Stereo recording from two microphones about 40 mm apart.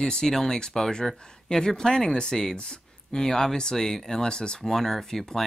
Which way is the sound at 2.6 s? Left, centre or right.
Left.